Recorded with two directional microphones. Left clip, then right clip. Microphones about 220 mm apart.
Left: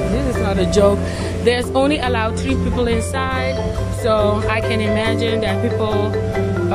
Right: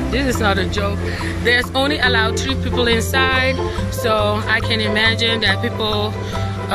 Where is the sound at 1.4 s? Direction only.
10° left (ahead or behind).